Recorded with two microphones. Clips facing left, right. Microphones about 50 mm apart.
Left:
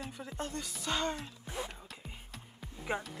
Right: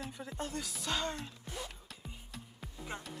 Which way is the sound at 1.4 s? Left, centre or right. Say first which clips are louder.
Left 4 dB; left.